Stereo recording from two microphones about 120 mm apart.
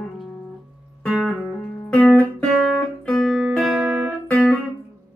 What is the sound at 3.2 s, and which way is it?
Music, centre (ahead or behind).